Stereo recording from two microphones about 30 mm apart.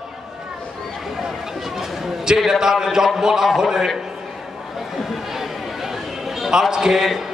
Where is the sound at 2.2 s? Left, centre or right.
Centre.